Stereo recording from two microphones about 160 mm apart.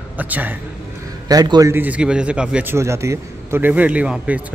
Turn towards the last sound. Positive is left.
turn(degrees=-5)  # may be behind; listen again after turning